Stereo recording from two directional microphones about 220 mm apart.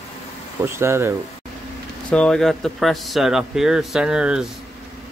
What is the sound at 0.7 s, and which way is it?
Speech, 10° right (ahead or behind).